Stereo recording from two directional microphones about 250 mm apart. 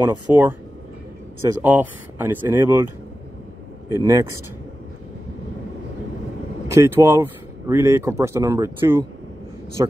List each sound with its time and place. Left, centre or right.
0.0 s speech: centre
1.6 s speech: centre
3.9 s speech: centre
6.7 s speech: centre